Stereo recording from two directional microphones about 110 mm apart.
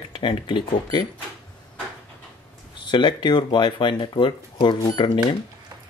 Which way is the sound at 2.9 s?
45° left (ahead or behind).